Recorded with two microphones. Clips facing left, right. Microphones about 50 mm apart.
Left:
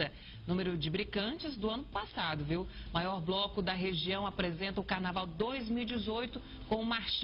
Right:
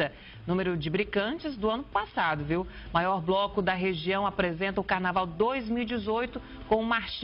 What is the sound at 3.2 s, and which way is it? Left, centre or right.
A woman's voice, right.